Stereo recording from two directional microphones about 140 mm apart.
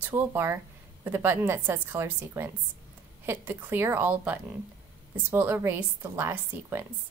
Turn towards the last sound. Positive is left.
turn(degrees=-15)  # may be behind; listen again after turning